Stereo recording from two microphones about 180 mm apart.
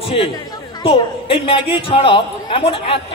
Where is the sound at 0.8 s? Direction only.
30° left (ahead or behind).